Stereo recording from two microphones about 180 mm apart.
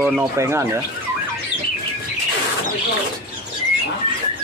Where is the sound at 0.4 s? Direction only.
15° right (ahead or behind).